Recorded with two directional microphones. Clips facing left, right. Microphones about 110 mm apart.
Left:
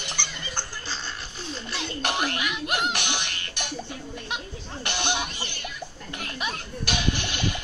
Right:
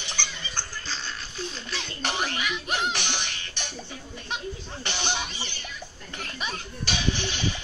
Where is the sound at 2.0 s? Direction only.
50° left (ahead or behind).